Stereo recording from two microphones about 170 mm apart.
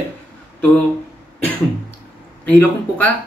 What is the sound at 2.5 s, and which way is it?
Speech, 10° left (ahead or behind).